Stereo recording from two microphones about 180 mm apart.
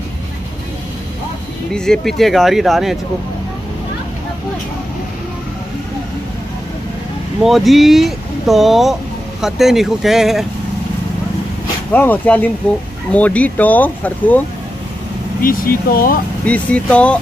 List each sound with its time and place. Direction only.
1.7 s speech: centre (ahead or behind)
7.4 s speech: centre (ahead or behind)
11.9 s speech: 10° left (ahead or behind)
15.4 s speech: 55° left (ahead or behind)
16.4 s speech: 5° left (ahead or behind)